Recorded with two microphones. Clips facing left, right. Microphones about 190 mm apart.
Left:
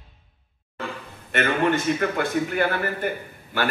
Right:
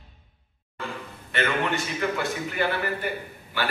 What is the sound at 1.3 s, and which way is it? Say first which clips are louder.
A man's voice: left 4 dB; 50° left (ahead or behind).